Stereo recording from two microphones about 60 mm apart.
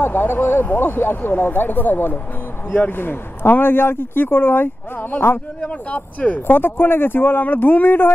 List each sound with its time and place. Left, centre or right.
0.0 s speech: left
5.6 s speech: left